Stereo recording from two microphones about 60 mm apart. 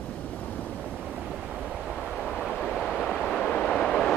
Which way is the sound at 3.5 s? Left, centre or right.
Centre.